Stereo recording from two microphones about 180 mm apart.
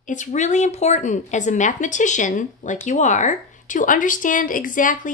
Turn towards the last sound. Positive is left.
turn(degrees=50)  # may be behind; listen again after turning